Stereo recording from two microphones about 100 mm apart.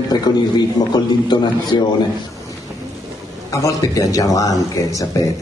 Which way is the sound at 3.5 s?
30° left (ahead or behind).